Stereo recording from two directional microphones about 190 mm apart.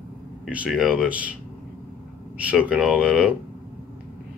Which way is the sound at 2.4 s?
5° right (ahead or behind).